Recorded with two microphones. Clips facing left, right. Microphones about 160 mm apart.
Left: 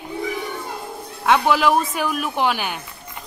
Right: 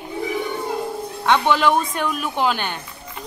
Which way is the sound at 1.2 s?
5° left (ahead or behind).